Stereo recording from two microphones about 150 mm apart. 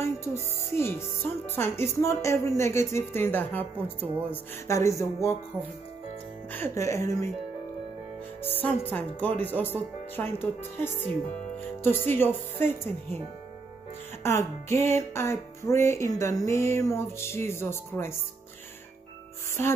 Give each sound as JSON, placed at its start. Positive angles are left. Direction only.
{"t": 0.0, "sound": "speech", "side_deg": 20}
{"t": 6.5, "sound": "speech", "side_deg": 15}
{"t": 8.4, "sound": "speech", "side_deg": 15}
{"t": 14.2, "sound": "speech", "side_deg": 15}